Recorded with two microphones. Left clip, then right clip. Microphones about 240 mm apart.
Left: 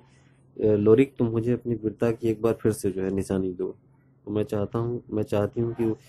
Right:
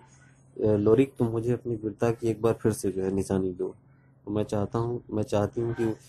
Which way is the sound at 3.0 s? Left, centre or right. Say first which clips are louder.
Left 1 dB; centre.